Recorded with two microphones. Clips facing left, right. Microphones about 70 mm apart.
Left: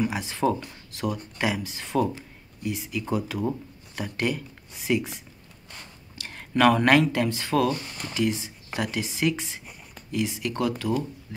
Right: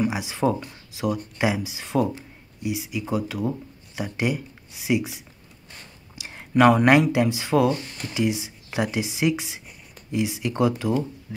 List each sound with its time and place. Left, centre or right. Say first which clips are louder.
0.0 s speech: right 2 dB; centre